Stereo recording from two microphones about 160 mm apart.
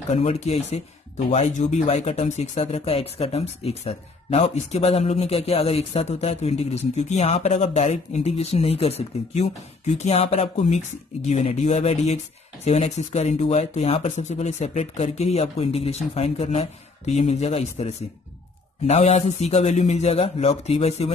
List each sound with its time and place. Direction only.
0.1 s speech: 45° left (ahead or behind)